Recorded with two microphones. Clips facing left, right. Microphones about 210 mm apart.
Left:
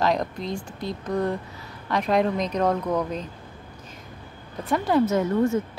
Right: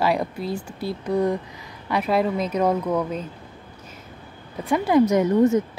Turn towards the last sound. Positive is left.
turn(degrees=-20)  # may be behind; listen again after turning